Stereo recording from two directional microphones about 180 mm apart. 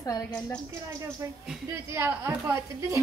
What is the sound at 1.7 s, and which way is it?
Speech, 10° right (ahead or behind).